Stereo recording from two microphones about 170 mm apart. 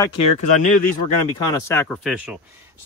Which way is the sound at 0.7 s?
50° left (ahead or behind).